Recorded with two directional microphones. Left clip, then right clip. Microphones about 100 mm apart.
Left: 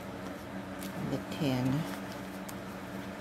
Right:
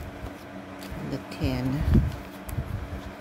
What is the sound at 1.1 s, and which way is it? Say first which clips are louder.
Speech: right 2 dB; 25° right (ahead or behind).